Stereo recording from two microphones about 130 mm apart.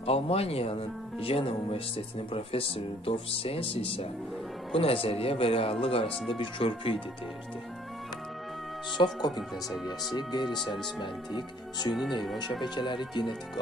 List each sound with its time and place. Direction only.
0.0 s speech: 50° left (ahead or behind)
8.9 s speech: 35° left (ahead or behind)